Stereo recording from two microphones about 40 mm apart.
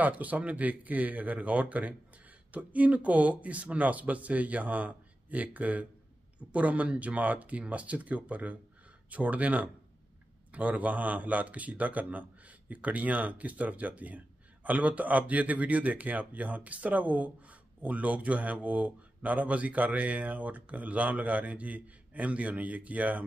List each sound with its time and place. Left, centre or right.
0.0 s a man's voice: right